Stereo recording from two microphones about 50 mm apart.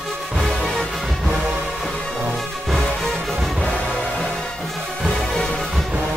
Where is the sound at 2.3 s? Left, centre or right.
Centre.